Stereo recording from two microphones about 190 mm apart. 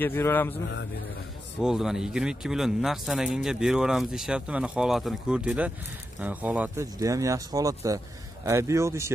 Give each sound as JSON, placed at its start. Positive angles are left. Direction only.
{"t": 0.0, "sound": "speech", "side_deg": 10}
{"t": 1.6, "sound": "speech", "side_deg": -5}